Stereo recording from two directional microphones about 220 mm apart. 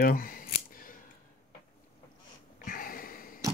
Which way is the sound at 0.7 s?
40° left (ahead or behind).